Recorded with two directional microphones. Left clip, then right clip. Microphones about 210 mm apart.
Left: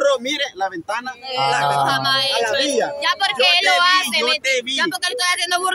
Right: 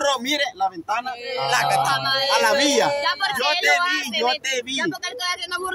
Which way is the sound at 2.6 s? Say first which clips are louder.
Right 1 dB; 50° right (ahead or behind).